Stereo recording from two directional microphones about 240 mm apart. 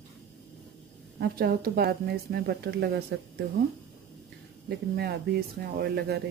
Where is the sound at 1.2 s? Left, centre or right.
Right.